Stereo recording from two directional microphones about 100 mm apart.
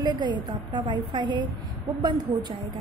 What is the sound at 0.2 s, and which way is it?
A woman's voice, 50° right (ahead or behind).